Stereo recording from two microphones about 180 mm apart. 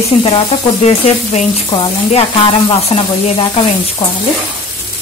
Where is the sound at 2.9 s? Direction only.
35° left (ahead or behind).